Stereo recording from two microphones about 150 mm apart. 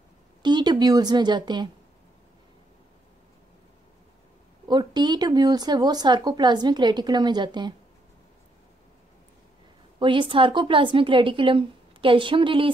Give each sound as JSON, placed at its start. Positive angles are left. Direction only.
{"t": 0.4, "sound": "speech", "side_deg": -30}
{"t": 4.6, "sound": "speech", "side_deg": -30}
{"t": 9.9, "sound": "a woman's voice", "side_deg": -35}